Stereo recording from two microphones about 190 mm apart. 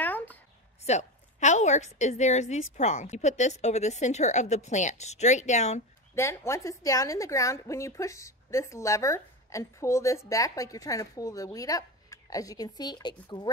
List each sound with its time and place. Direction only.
0.0 s a sound: 10° left (ahead or behind)
0.8 s a woman's voice: 35° left (ahead or behind)
6.1 s a woman's voice: 15° left (ahead or behind)